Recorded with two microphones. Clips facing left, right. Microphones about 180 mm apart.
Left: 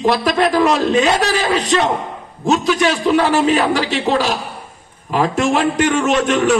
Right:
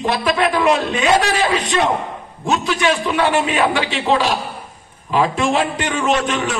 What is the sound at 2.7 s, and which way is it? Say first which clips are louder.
A man's voice: left 3 dB; 40° left (ahead or behind).